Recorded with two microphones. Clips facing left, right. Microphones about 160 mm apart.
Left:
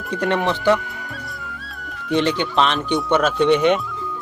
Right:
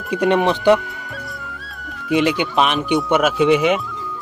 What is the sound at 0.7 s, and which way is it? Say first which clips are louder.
Music: right 2 dB; centre (ahead or behind).